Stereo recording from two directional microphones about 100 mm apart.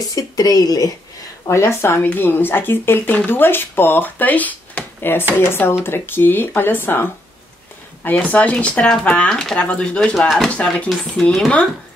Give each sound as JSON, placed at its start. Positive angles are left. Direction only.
{"t": 0.1, "sound": "speech", "side_deg": 40}
{"t": 1.5, "sound": "speech", "side_deg": 30}
{"t": 10.5, "sound": "speech", "side_deg": 15}